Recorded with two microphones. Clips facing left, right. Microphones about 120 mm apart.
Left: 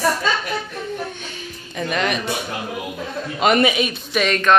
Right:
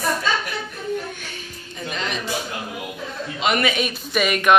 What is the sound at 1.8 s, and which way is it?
Speech, 65° left (ahead or behind).